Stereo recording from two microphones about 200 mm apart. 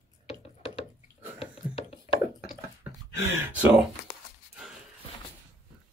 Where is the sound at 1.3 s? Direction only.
30° left (ahead or behind).